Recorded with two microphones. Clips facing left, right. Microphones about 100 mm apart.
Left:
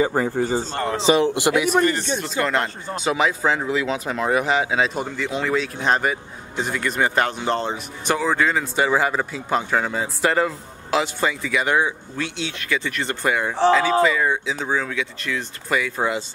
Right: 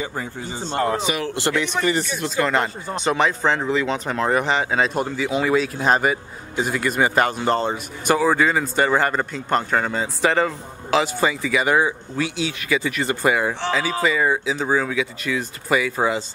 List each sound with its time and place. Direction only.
0.0 s speech: 45° left (ahead or behind)
0.7 s speech: 10° right (ahead or behind)
1.0 s speech: 25° left (ahead or behind)
2.1 s speech: centre (ahead or behind)